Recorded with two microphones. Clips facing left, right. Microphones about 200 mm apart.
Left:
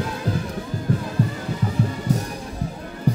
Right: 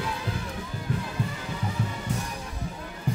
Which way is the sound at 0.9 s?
40° left (ahead or behind).